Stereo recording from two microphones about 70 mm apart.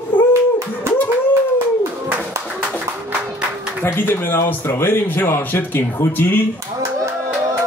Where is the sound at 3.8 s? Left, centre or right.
Left.